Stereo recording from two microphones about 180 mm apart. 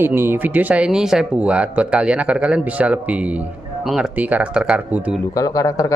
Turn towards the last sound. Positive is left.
turn(degrees=20)  # may be behind; listen again after turning